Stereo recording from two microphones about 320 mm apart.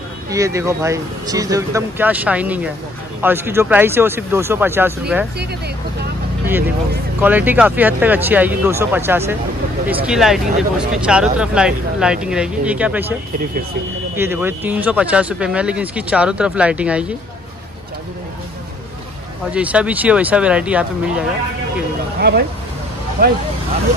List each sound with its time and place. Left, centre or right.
0.3 s speech: centre
7.2 s speech: centre
14.1 s speech: centre
19.5 s speech: centre
23.2 s speech: right